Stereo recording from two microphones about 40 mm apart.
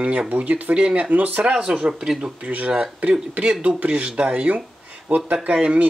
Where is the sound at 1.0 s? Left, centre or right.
Right.